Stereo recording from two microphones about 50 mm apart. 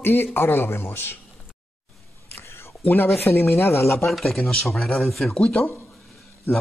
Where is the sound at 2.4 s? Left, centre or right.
Left.